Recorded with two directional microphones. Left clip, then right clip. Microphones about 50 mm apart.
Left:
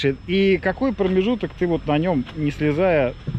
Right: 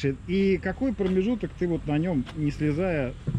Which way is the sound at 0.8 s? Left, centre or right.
Right.